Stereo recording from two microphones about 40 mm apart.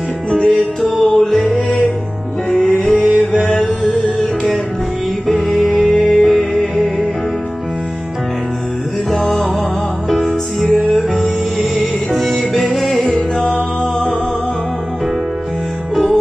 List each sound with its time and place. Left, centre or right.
0.3 s music: centre
2.9 s music: centre
5.2 s music: centre
10.0 s music: centre
13.4 s music: left
15.9 s music: centre